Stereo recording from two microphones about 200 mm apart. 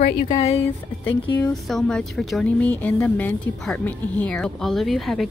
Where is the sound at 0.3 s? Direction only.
30° left (ahead or behind).